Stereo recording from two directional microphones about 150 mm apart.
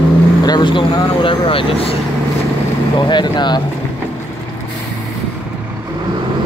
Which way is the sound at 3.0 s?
30° left (ahead or behind).